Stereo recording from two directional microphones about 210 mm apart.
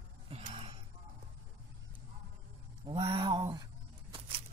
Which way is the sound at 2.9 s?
25° right (ahead or behind).